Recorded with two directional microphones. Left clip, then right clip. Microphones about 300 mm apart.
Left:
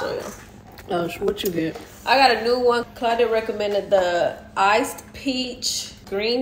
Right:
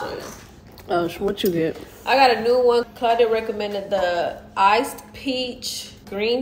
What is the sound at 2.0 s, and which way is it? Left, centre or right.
A woman's voice, centre.